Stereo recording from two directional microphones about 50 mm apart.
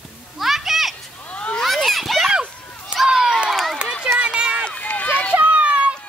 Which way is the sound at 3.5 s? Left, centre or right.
Centre.